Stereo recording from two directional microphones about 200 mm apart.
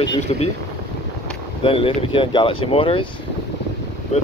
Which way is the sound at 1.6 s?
25° left (ahead or behind).